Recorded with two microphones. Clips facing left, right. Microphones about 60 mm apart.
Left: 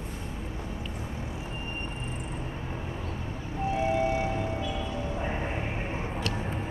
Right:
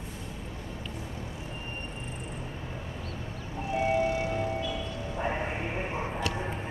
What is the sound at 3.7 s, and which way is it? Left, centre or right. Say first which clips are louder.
Vehicle: right 1 dB; left.